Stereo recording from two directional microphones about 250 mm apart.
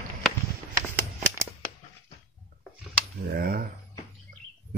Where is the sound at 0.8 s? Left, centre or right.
Centre.